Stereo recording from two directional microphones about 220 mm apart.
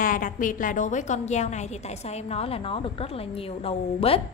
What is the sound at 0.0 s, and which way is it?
A woman's voice, 40° left (ahead or behind).